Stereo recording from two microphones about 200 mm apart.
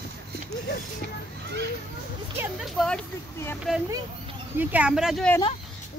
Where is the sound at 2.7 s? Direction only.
5° left (ahead or behind).